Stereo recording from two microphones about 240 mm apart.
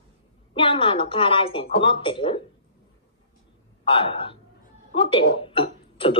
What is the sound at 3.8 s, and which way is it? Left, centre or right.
A man's voice, left.